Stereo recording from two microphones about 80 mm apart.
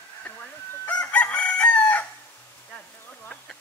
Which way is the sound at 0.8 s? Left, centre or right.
Centre.